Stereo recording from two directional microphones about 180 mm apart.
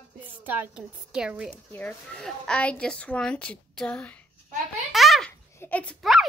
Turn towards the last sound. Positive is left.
turn(degrees=5)  # may be behind; listen again after turning